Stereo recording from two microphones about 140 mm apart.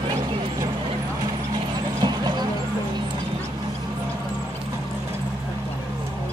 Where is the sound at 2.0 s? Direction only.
30° right (ahead or behind).